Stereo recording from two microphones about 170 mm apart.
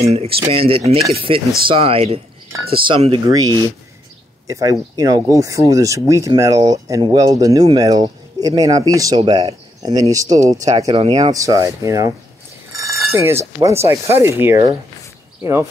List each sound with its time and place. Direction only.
0.0 s speech: 35° right (ahead or behind); by 12.1 s 20° right (ahead or behind)
12.7 s a sound: 20° right (ahead or behind)
13.1 s speech: 15° right (ahead or behind)